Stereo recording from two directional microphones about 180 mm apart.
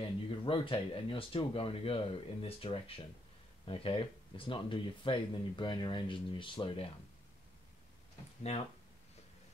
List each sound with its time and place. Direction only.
0.0 s speech: 30° left (ahead or behind)